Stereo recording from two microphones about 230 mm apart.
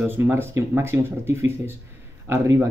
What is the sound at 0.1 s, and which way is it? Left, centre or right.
Speech, centre.